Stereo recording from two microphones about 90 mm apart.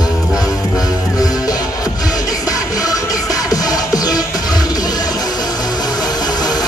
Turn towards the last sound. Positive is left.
turn(degrees=50)  # may be behind; listen again after turning